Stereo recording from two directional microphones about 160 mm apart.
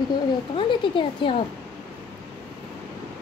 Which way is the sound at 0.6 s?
35° left (ahead or behind).